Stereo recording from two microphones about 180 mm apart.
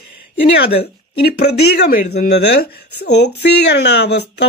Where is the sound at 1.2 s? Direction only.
65° left (ahead or behind).